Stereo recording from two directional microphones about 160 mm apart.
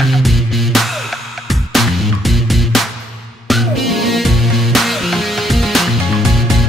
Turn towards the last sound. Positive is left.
turn(degrees=0)  # may be behind; listen again after turning